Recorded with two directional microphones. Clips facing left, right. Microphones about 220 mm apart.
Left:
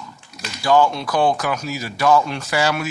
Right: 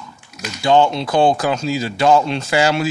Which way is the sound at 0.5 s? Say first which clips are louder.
Right 2 dB; 25° right (ahead or behind).